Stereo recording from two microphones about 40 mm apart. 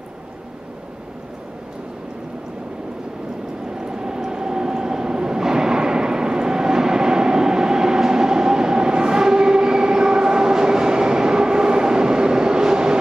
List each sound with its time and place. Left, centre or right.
3.7 s vehicle: centre